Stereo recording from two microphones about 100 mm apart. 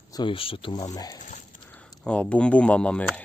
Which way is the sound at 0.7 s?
40° left (ahead or behind).